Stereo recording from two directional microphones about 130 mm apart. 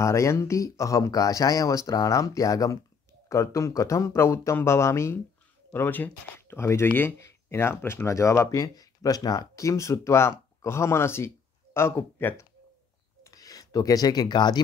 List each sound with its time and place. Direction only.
0.0 s speech: 20° left (ahead or behind)